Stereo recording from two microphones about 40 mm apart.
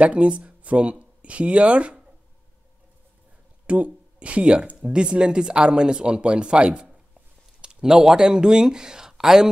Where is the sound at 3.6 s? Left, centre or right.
Right.